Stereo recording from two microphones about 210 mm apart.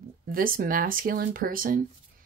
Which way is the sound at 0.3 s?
45° right (ahead or behind).